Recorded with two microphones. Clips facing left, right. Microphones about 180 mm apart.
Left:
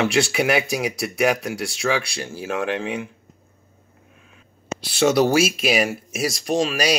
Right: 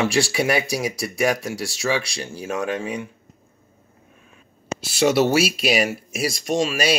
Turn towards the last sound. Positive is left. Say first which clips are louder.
# even
turn(degrees=0)  # may be behind; listen again after turning